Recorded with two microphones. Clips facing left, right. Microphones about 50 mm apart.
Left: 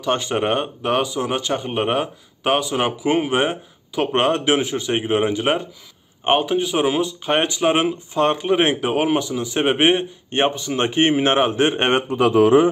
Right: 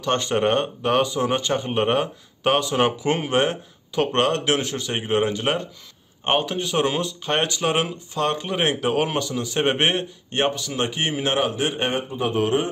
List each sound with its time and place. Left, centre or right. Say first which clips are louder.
0.0 s a man's voice: even; centre
10.3 s a man's voice: left 3 dB; left